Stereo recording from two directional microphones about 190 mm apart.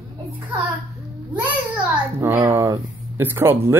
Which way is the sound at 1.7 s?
15° right (ahead or behind).